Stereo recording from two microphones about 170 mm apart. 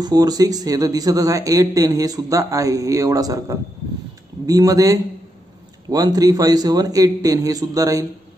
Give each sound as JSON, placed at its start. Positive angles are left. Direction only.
{"t": 0.0, "sound": "speech", "side_deg": -25}